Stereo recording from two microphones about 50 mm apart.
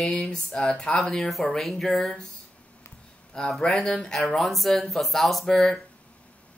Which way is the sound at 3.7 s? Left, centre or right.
Centre.